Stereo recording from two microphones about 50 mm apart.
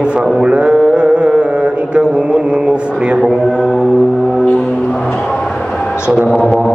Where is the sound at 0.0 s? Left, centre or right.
Centre.